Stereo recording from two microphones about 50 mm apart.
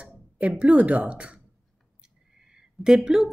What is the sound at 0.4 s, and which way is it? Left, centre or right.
Speech, right.